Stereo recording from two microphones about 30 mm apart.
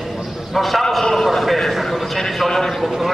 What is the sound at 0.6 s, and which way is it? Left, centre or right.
Speech, centre.